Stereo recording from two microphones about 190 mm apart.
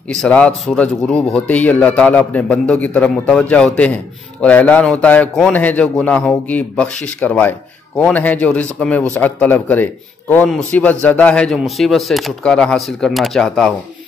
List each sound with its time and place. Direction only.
0.1 s a man's voice: 5° left (ahead or behind)